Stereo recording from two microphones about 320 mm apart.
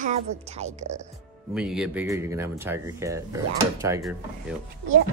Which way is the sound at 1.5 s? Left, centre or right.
Centre.